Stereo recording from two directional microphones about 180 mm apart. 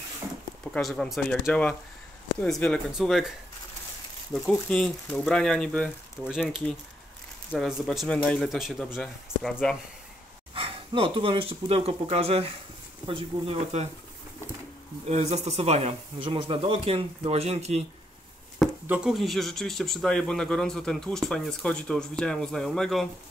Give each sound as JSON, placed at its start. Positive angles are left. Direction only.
{"t": 0.7, "sound": "speech", "side_deg": 0}
{"t": 4.5, "sound": "speech", "side_deg": 5}
{"t": 7.5, "sound": "speech", "side_deg": 0}
{"t": 10.5, "sound": "speech", "side_deg": -30}
{"t": 15.0, "sound": "speech", "side_deg": -35}
{"t": 18.6, "sound": "speech", "side_deg": 0}